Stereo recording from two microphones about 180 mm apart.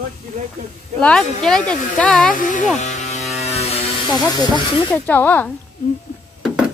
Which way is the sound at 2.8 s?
40° left (ahead or behind).